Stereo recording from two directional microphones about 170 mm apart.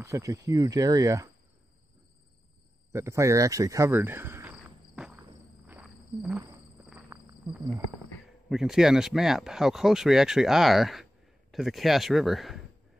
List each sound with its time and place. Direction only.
0.0 s speech: 20° right (ahead or behind)
2.9 s a sound: 15° right (ahead or behind)
8.5 s speech: centre (ahead or behind)